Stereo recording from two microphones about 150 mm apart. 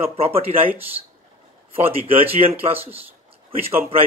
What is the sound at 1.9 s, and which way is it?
Speech, 40° right (ahead or behind).